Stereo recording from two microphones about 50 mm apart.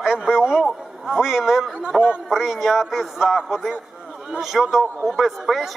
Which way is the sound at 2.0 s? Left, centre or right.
Centre.